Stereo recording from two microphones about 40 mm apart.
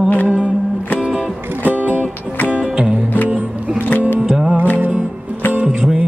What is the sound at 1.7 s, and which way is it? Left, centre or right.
Music, right.